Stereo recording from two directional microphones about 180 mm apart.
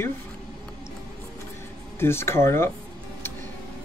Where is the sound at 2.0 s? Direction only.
15° left (ahead or behind).